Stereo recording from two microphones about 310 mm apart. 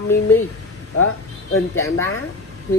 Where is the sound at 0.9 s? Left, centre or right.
Left.